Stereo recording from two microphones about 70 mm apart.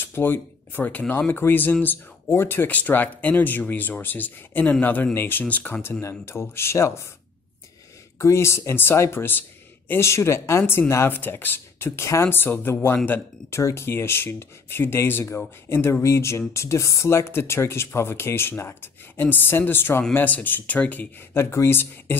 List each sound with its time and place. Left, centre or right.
0.0 s speech: left
5.8 s speech: left
8.2 s speech: left
10.6 s speech: left
13.5 s speech: left
21.3 s speech: left